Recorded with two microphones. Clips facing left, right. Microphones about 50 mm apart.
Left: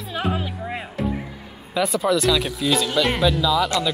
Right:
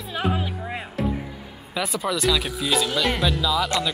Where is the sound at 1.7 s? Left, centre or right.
Centre.